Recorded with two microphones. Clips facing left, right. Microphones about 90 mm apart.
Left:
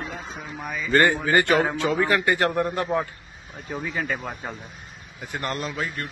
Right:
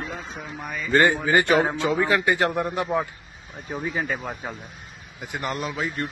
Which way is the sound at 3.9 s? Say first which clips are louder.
Even; 5° right (ahead or behind).